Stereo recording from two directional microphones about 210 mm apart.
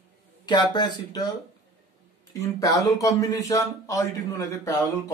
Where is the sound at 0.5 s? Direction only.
20° left (ahead or behind).